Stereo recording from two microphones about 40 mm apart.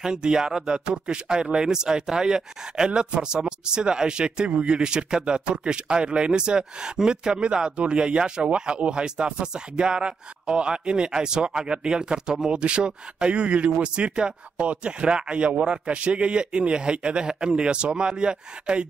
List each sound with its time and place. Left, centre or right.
0.0 s speech: centre